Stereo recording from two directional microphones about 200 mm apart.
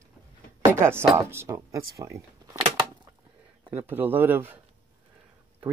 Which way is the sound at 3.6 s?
10° right (ahead or behind).